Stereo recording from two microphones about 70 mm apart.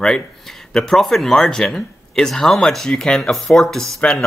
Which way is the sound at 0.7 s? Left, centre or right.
Centre.